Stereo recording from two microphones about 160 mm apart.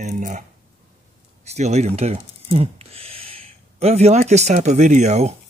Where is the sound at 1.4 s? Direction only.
45° right (ahead or behind).